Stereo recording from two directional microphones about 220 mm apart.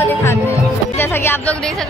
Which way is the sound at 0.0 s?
10° left (ahead or behind).